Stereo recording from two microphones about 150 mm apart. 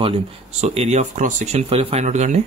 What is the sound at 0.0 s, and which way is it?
Speech, 45° right (ahead or behind).